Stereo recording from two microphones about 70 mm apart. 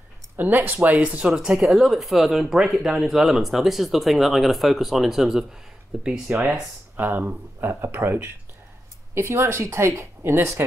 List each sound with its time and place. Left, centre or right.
0.4 s speech: right
1.2 s speech: centre
7.0 s a woman's voice: right